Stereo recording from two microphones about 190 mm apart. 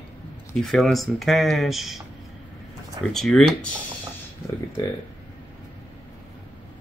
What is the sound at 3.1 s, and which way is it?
Speech, centre (ahead or behind).